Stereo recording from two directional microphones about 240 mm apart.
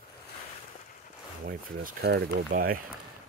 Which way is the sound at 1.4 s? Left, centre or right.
Right.